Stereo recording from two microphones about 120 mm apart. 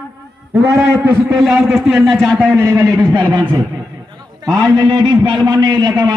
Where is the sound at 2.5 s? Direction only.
30° right (ahead or behind).